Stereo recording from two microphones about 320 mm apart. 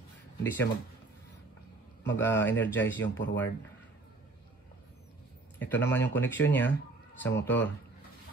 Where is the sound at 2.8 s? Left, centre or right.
Left.